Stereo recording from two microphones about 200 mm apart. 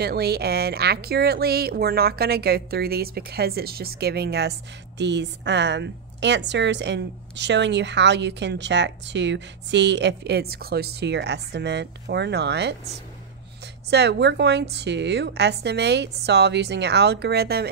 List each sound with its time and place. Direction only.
0.0 s speech: 55° right (ahead or behind)
13.8 s speech: 55° right (ahead or behind)